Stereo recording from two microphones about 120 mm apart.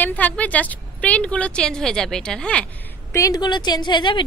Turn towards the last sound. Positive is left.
turn(degrees=40)  # may be behind; listen again after turning